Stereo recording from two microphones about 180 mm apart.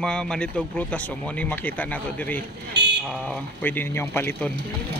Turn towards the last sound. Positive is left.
turn(degrees=10)  # may be behind; listen again after turning